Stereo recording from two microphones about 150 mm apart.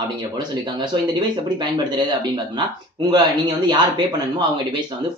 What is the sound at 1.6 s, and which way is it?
Speech, 30° right (ahead or behind).